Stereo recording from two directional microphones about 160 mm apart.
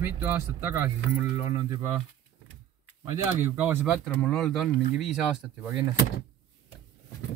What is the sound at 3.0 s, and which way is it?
Speech, 15° right (ahead or behind).